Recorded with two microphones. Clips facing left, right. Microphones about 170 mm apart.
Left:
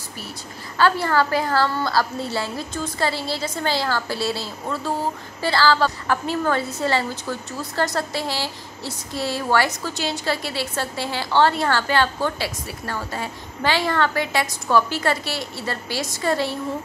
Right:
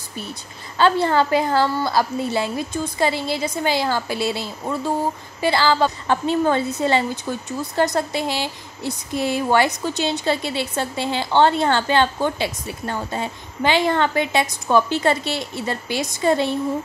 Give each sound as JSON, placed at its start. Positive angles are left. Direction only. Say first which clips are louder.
{"t": 0.7, "sound": "a woman's voice", "louder": "right 2 dB", "side_deg": -20}